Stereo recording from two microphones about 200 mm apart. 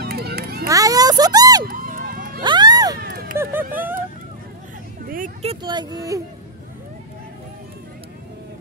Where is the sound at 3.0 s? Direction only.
50° right (ahead or behind).